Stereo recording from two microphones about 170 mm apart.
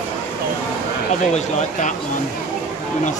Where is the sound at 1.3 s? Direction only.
45° left (ahead or behind).